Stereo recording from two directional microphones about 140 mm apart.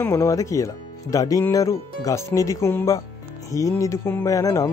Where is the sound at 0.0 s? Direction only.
20° left (ahead or behind).